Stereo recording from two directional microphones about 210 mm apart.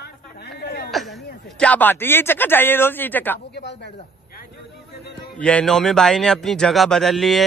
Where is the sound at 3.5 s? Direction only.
55° left (ahead or behind).